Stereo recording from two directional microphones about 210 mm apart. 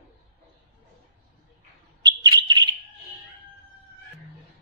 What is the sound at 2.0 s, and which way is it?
Bird, 20° right (ahead or behind).